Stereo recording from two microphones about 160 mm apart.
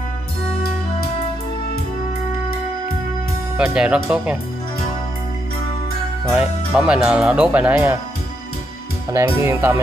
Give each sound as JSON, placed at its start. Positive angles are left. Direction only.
{"t": 3.5, "sound": "speech", "side_deg": -5}
{"t": 6.3, "sound": "speech", "side_deg": -5}
{"t": 9.1, "sound": "speech", "side_deg": -15}